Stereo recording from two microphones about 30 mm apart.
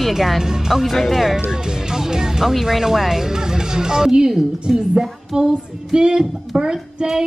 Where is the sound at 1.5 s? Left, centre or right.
Right.